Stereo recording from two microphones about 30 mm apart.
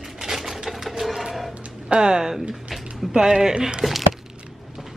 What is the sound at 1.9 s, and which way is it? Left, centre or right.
Speech, right.